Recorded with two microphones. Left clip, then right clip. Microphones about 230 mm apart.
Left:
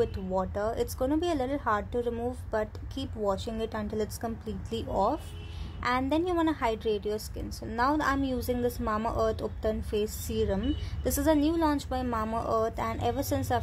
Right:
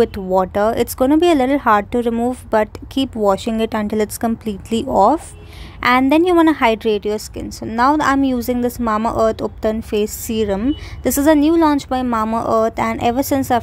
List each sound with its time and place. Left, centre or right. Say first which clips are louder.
0.0 s a woman's voice: right 14 dB; right